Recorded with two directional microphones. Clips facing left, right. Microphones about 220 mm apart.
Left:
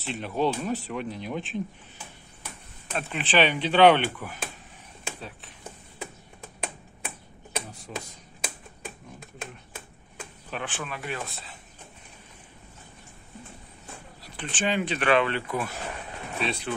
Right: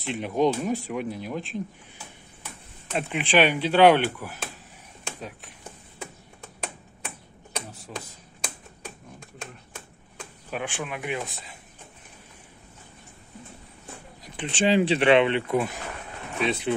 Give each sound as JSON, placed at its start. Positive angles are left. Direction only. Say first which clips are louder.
{"t": 0.0, "sound": "speech", "louder": "right 3 dB", "side_deg": -15}
{"t": 2.9, "sound": "speech", "louder": "right 3 dB", "side_deg": -15}
{"t": 7.5, "sound": "a sound", "louder": "left 1 dB", "side_deg": 5}
{"t": 10.5, "sound": "speech", "louder": "right 3 dB", "side_deg": -10}
{"t": 14.2, "sound": "speech", "louder": "right 5 dB", "side_deg": -20}